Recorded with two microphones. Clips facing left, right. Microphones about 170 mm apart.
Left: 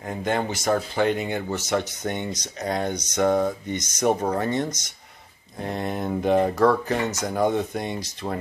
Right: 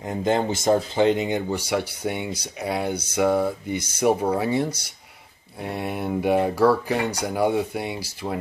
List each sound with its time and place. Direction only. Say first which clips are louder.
0.0 s speech: right 3 dB; 25° right (ahead or behind); by 8.4 s 10° right (ahead or behind)